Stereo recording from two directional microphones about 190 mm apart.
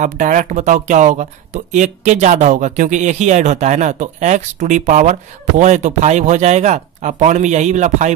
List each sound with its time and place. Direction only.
0.0 s speech: 40° right (ahead or behind)